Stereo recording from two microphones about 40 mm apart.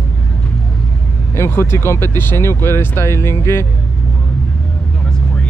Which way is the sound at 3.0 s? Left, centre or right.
Left.